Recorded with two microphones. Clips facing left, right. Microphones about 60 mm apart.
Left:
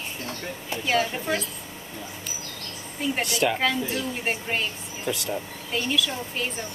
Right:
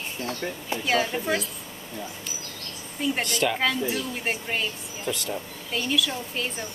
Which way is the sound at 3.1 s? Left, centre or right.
Centre.